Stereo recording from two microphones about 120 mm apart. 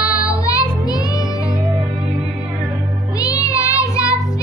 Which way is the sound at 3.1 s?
30° left (ahead or behind).